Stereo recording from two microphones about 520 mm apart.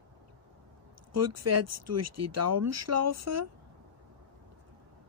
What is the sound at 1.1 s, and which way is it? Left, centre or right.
A woman's voice, right.